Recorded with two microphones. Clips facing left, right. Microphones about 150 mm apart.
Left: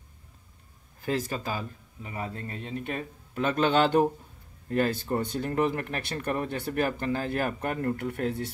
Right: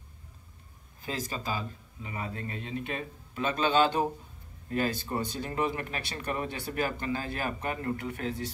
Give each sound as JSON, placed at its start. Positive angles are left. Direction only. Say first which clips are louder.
{"t": 1.0, "sound": "speech", "louder": "left 5 dB", "side_deg": 60}
{"t": 2.1, "sound": "speech", "louder": "left 1 dB", "side_deg": 40}